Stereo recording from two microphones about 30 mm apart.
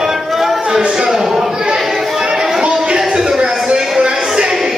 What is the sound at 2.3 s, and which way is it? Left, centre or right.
Music, centre.